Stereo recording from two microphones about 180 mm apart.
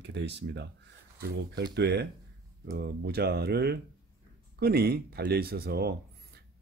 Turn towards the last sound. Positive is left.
turn(degrees=-60)  # may be behind; listen again after turning